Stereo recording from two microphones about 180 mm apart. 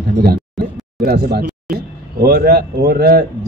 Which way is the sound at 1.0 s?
65° right (ahead or behind).